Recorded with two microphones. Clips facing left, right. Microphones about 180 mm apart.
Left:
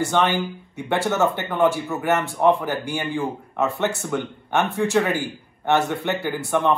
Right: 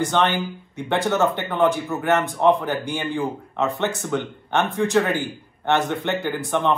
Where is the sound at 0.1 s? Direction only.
10° left (ahead or behind).